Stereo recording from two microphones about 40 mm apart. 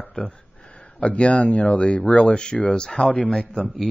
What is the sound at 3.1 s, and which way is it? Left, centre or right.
Speech, left.